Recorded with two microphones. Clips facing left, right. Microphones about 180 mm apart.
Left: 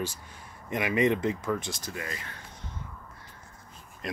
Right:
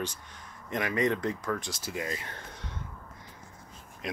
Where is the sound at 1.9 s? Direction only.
20° right (ahead or behind).